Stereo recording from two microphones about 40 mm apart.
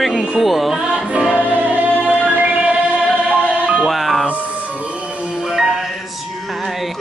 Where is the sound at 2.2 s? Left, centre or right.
Right.